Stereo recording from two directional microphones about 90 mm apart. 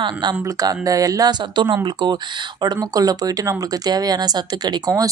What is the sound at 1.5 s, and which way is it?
Speech, 60° right (ahead or behind).